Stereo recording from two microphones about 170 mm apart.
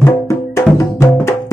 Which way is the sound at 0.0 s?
20° left (ahead or behind).